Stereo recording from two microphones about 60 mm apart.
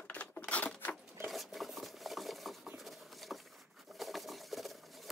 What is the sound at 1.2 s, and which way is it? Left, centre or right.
Cutlery, centre.